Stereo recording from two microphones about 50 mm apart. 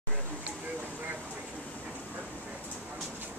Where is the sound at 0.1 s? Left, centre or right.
Right.